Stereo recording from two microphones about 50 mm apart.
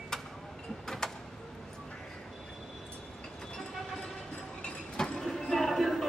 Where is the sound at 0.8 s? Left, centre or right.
Centre.